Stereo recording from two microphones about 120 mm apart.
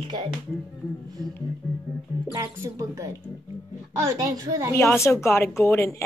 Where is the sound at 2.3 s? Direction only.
30° right (ahead or behind).